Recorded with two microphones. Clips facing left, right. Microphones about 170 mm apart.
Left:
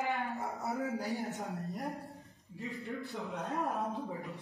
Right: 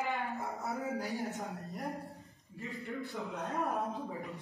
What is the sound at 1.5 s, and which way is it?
Speech, centre (ahead or behind).